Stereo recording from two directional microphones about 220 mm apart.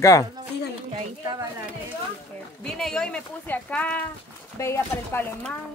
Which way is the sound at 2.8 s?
5° left (ahead or behind).